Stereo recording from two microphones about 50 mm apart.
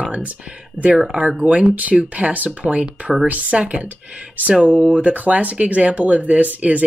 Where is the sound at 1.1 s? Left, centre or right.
Right.